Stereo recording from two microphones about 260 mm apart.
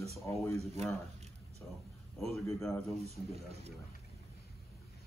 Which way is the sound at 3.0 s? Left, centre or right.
Right.